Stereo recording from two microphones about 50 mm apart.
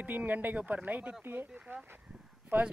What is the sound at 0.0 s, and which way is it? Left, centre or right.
Speech, right.